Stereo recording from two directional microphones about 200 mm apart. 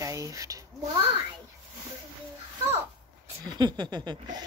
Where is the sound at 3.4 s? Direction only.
20° right (ahead or behind).